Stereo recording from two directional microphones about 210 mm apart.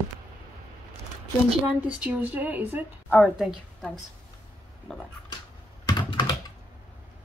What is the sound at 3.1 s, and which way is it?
Speech, 5° left (ahead or behind).